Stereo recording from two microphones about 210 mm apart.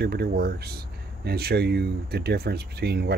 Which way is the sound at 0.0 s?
50° right (ahead or behind).